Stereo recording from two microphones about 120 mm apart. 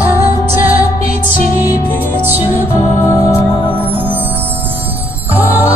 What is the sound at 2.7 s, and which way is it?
Music, 20° left (ahead or behind).